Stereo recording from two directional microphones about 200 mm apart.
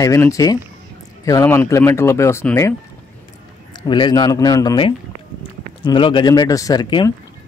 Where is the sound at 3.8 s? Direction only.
20° left (ahead or behind).